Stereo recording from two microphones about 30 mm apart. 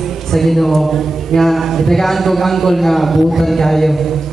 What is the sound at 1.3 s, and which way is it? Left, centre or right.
A man's voice, centre.